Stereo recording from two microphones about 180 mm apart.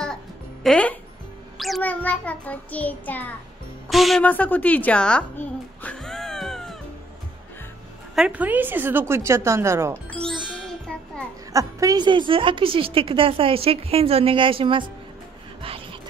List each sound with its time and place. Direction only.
0.7 s speech: 5° left (ahead or behind)
1.6 s child singing: 5° left (ahead or behind)
3.9 s a sound: centre (ahead or behind)
8.1 s a woman's voice: 5° right (ahead or behind)
10.0 s music: 5° left (ahead or behind)
11.5 s a woman's voice: 20° right (ahead or behind)
15.6 s vehicle: 30° right (ahead or behind)